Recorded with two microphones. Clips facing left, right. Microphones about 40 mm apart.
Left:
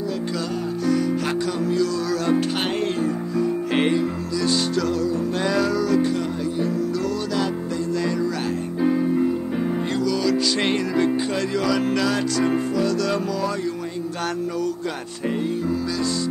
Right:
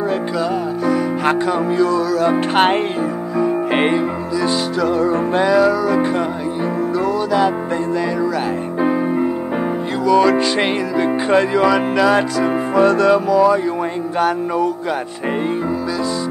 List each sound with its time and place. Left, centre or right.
1.8 s speech: right
2.3 s music: right
3.3 s music: right
8.8 s music: right
11.2 s speech: right
12.7 s music: right
13.1 s music: centre